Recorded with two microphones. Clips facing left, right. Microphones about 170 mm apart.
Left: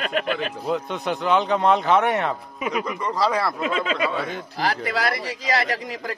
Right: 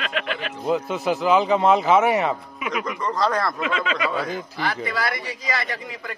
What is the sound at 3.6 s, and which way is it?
Speech, 40° left (ahead or behind).